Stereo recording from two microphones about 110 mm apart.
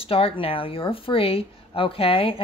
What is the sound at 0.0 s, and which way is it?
Speech, 60° left (ahead or behind).